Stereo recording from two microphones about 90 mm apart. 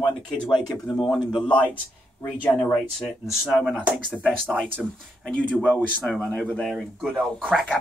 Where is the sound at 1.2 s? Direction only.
60° left (ahead or behind).